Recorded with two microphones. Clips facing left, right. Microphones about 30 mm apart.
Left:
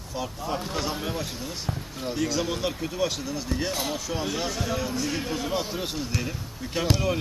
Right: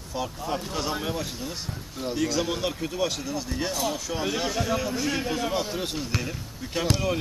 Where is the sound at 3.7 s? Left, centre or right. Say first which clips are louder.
Right 1 dB; left.